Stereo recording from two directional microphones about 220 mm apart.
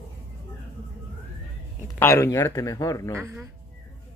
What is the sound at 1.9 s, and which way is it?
Speech, 10° left (ahead or behind).